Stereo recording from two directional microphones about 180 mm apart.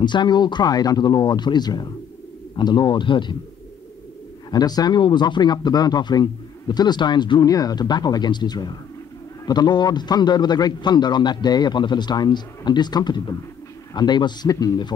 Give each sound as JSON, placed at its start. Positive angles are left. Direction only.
{"t": 0.0, "sound": "speech", "side_deg": 25}
{"t": 4.5, "sound": "speech", "side_deg": 20}